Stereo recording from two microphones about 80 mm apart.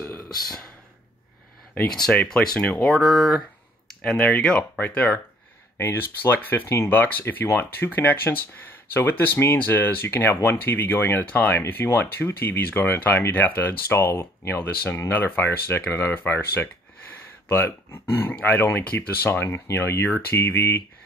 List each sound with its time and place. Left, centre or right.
0.3 s speech: centre
2.2 s speech: centre
4.7 s speech: centre